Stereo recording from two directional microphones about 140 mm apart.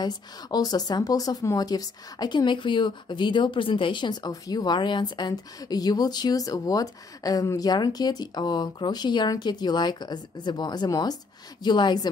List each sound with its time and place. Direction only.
0.0 s a woman's voice: 30° left (ahead or behind)